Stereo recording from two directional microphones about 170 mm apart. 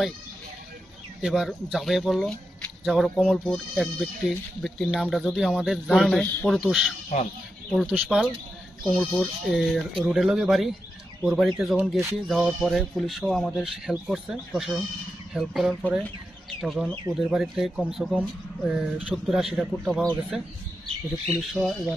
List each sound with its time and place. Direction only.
1.2 s speech: centre (ahead or behind)
7.1 s speech: 45° left (ahead or behind)
7.7 s speech: 5° right (ahead or behind)